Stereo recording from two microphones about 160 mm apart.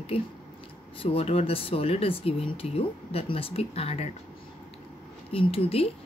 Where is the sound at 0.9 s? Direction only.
35° left (ahead or behind).